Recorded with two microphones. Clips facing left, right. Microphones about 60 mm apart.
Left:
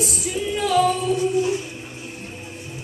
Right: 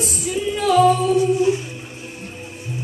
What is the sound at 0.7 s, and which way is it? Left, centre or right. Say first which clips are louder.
Singing: right 5 dB; centre.